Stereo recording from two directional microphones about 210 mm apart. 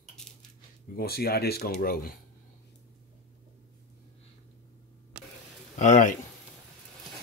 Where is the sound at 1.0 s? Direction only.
45° left (ahead or behind).